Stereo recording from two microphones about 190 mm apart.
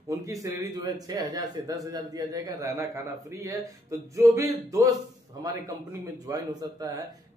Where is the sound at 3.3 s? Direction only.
15° right (ahead or behind).